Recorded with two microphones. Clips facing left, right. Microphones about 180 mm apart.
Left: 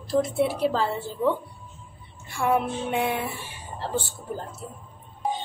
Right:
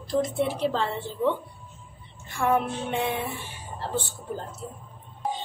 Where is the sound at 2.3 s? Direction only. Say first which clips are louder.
Even; 10° left (ahead or behind).